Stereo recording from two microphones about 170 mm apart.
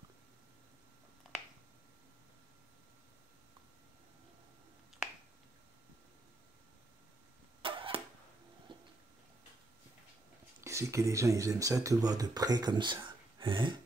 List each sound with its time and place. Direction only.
7.6 s arrow: 30° right (ahead or behind)
8.7 s a sound: 30° right (ahead or behind)
10.6 s speech: 15° right (ahead or behind)